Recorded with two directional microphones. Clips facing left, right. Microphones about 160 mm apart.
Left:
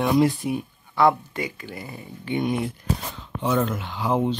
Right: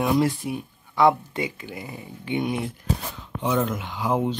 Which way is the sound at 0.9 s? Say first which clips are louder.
Even; 20° right (ahead or behind).